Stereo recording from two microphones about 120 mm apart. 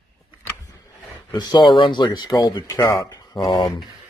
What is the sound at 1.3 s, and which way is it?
Speech, 40° left (ahead or behind).